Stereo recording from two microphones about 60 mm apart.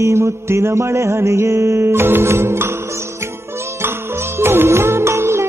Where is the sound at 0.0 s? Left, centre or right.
Right.